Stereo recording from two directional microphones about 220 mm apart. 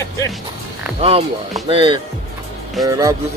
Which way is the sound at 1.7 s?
25° right (ahead or behind).